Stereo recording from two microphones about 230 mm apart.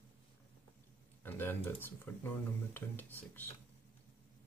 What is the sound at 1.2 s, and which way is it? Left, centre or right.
Speech, centre.